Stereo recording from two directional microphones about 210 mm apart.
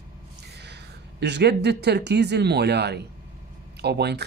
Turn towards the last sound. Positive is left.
turn(degrees=-50)  # may be behind; listen again after turning